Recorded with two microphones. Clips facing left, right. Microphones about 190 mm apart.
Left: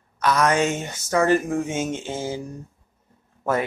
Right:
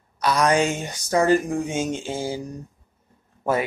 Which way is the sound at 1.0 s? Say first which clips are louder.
Right 1 dB; 35° right (ahead or behind).